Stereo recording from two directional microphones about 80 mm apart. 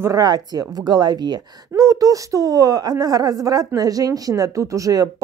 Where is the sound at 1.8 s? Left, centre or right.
Right.